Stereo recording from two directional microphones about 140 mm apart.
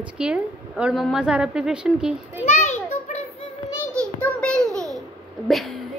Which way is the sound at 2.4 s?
55° left (ahead or behind).